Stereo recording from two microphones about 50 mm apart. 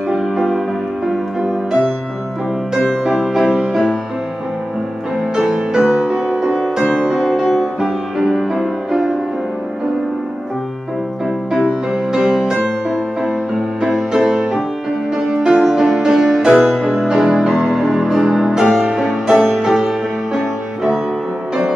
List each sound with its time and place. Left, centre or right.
0.1 s music: centre
3.1 s music: centre
5.3 s music: centre
11.5 s music: centre
13.9 s music: centre
19.3 s music: centre
19.6 s music: centre